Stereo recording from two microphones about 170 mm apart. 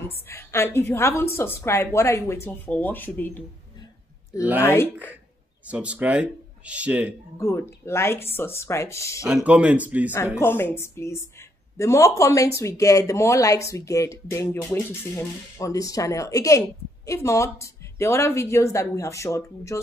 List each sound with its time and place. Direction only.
0.3 s speech: 15° left (ahead or behind)
4.6 s speech: 15° left (ahead or behind)
5.7 s a man's voice: 5° right (ahead or behind)
7.3 s speech: 15° left (ahead or behind)
9.3 s a man's voice: 5° right (ahead or behind)
10.1 s speech: 15° left (ahead or behind)